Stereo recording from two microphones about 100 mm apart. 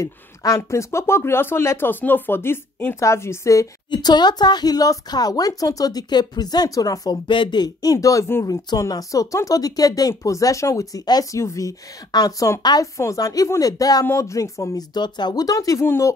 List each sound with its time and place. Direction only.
0.0 s speech: 35° left (ahead or behind)
3.9 s speech: 45° left (ahead or behind)
7.2 s speech: 50° left (ahead or behind); by 14.9 s 35° left (ahead or behind)
15.0 s speech: 45° left (ahead or behind)